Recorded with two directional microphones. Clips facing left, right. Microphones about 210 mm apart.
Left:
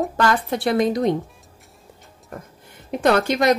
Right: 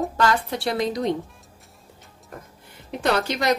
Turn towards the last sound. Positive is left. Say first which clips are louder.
# left 5 dB
turn(degrees=55)  # may be behind; listen again after turning